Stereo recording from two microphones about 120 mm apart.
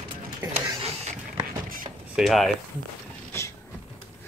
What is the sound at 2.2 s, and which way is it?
Speech, centre (ahead or behind).